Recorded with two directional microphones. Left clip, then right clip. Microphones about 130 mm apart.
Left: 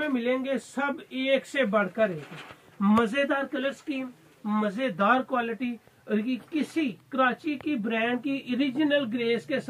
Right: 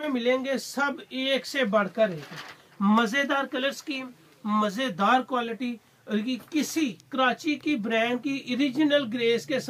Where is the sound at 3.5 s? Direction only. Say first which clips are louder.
Right 2 dB; 15° right (ahead or behind).